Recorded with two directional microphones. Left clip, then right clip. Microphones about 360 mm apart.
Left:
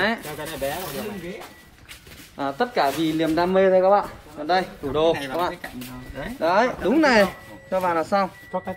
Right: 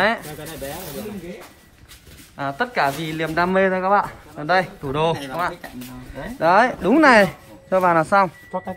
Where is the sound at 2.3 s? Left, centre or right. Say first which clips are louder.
Right 1 dB; centre.